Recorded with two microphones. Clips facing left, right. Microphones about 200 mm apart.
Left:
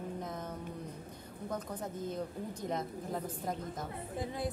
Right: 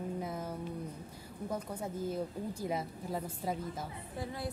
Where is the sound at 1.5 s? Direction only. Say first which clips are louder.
Right 1 dB; 10° right (ahead or behind).